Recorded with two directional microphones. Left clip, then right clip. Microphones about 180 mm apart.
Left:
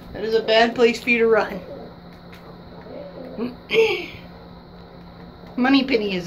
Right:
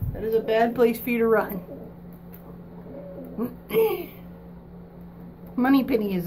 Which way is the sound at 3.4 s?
15° right (ahead or behind).